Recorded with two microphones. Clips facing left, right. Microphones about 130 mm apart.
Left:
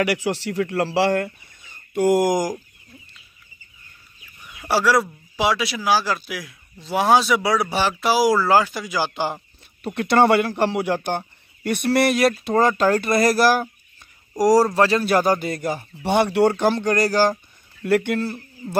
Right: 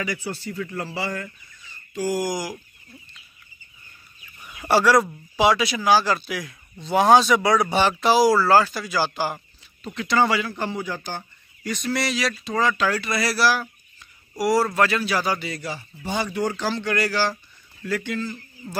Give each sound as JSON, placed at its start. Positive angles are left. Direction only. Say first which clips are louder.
{"t": 0.0, "sound": "speech", "louder": "left 7 dB", "side_deg": 80}
{"t": 4.4, "sound": "speech", "louder": "right 2 dB", "side_deg": -5}
{"t": 9.8, "sound": "speech", "louder": "left 5 dB", "side_deg": 60}
{"t": 15.0, "sound": "a man's voice", "louder": "left 6 dB", "side_deg": 50}
{"t": 16.0, "sound": "speech", "louder": "left 8 dB", "side_deg": 65}
{"t": 16.9, "sound": "a man's voice", "louder": "left 5 dB", "side_deg": 40}
{"t": 17.8, "sound": "speech", "louder": "left 7 dB", "side_deg": 60}